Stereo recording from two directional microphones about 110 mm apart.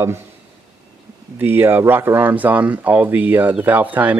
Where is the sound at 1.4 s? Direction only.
20° right (ahead or behind).